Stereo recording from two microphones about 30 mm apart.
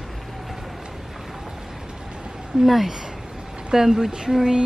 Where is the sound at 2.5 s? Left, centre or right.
Centre.